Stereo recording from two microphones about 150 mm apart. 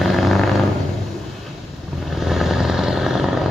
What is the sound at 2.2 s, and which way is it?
Vehicle, centre (ahead or behind).